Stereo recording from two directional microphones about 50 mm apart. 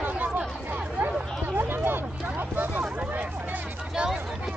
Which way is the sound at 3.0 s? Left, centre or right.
Right.